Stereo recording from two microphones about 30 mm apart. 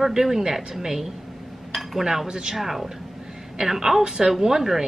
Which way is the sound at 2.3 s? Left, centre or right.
Right.